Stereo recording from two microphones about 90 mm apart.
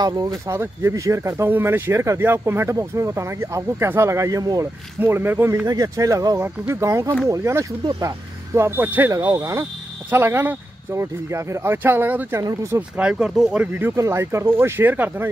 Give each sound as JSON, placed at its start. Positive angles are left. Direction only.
{"t": 0.0, "sound": "speech", "side_deg": -45}
{"t": 0.5, "sound": "speech", "side_deg": -30}
{"t": 5.0, "sound": "speech", "side_deg": -20}
{"t": 5.7, "sound": "speech", "side_deg": -40}
{"t": 8.5, "sound": "speech", "side_deg": -25}
{"t": 9.4, "sound": "speech", "side_deg": -35}
{"t": 12.4, "sound": "speech", "side_deg": -30}
{"t": 12.9, "sound": "speech", "side_deg": -15}
{"t": 13.6, "sound": "speech", "side_deg": -20}